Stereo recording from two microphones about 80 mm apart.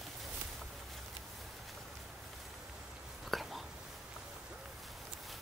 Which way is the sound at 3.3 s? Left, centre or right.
Centre.